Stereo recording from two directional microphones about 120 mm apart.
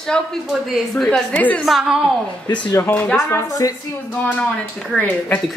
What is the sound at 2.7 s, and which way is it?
Speech, 15° left (ahead or behind).